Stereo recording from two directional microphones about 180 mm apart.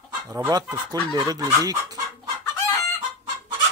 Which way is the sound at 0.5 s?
20° right (ahead or behind).